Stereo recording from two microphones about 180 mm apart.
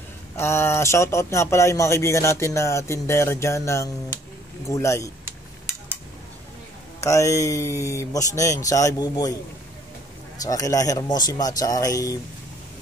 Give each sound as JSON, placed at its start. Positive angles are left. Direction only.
{"t": 0.4, "sound": "speech", "side_deg": 15}
{"t": 7.0, "sound": "speech", "side_deg": 15}
{"t": 10.4, "sound": "speech", "side_deg": 20}